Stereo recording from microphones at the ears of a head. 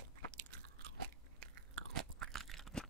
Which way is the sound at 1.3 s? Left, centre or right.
Right.